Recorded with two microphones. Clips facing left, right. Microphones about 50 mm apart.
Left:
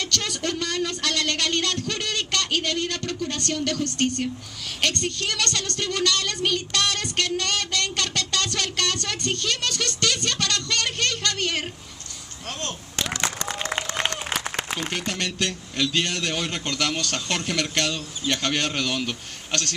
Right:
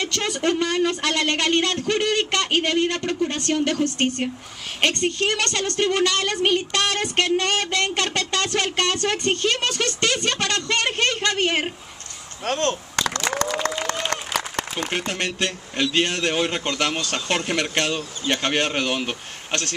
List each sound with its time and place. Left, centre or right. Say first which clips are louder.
0.0 s a man's voice: right 4 dB; right
12.4 s speech: right 10 dB; right
13.3 s applause: right 7 dB; right
14.9 s a man's voice: right 3 dB; right